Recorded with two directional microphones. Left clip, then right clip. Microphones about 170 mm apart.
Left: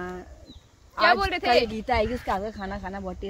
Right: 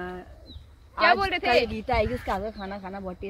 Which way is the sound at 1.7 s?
35° left (ahead or behind).